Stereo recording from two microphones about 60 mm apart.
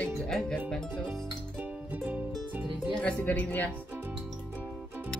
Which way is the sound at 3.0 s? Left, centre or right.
Left.